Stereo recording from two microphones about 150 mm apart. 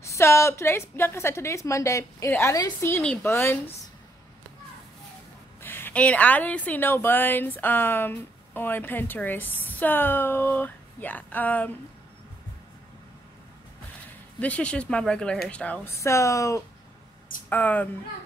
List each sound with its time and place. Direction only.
0.0 s a woman's voice: 20° left (ahead or behind)
3.0 s speech: 5° left (ahead or behind)
3.3 s a woman's voice: 15° left (ahead or behind)
5.6 s a woman's voice: 15° left (ahead or behind)
14.4 s a woman's voice: 10° left (ahead or behind)